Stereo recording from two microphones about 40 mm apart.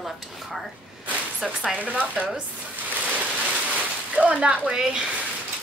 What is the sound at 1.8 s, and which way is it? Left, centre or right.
Speech, right.